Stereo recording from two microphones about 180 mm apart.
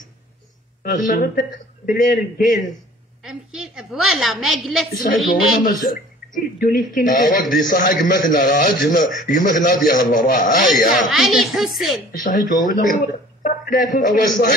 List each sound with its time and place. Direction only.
0.8 s a man's voice: 45° left (ahead or behind)
3.3 s a woman's voice: centre (ahead or behind)
5.6 s a man's voice: 50° left (ahead or behind)
11.1 s a woman's voice: centre (ahead or behind)
12.2 s a man's voice: 50° left (ahead or behind)